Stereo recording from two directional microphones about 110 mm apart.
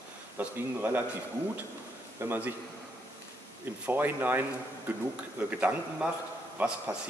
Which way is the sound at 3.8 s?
15° right (ahead or behind).